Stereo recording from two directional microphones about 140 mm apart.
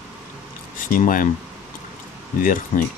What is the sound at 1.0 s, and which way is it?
Speech, 75° left (ahead or behind).